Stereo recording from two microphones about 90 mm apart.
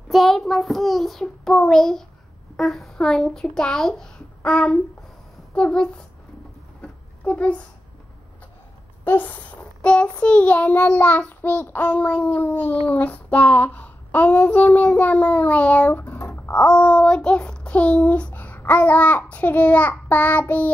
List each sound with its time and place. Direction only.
0.1 s child singing: centre (ahead or behind)
6.8 s a sound: 15° left (ahead or behind)
9.0 s child singing: 20° left (ahead or behind)